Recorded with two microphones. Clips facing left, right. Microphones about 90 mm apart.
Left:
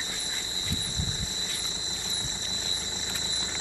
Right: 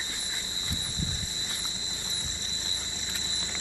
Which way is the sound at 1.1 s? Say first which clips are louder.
Left 2 dB; 20° left (ahead or behind).